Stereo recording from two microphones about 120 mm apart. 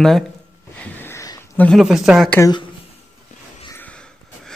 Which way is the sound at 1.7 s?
Centre (ahead or behind).